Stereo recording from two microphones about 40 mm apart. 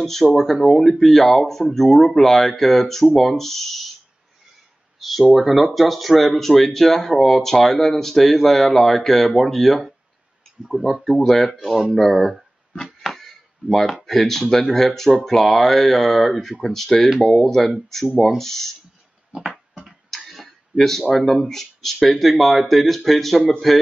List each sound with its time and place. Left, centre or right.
0.0 s speech: centre
5.2 s speech: centre
5.5 s speech: centre
10.7 s speech: centre
11.5 s speech: centre
13.0 s chop: centre
14.0 s speech: centre
19.3 s a sound: right
20.1 s tick-tock: centre
21.3 s speech: centre